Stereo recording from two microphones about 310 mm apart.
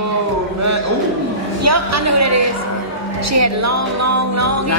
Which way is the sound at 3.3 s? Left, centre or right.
Right.